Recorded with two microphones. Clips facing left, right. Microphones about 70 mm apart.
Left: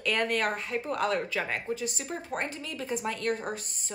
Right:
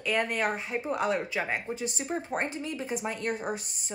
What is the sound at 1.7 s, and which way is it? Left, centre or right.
Speech, right.